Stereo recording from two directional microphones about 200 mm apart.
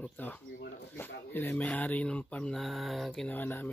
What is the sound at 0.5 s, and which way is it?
Speech, 65° left (ahead or behind).